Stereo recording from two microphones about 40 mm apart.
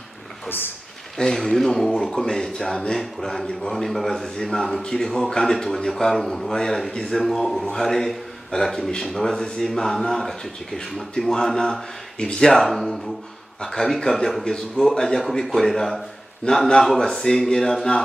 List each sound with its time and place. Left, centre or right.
1.1 s speech: centre
6.9 s speech: left
7.2 s a man's voice: centre